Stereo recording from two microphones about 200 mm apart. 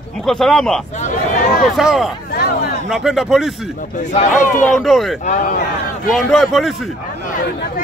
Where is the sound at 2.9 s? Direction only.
Centre (ahead or behind).